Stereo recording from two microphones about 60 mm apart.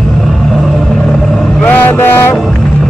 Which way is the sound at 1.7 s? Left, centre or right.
Left.